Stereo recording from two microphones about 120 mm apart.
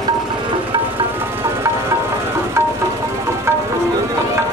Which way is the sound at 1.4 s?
25° right (ahead or behind).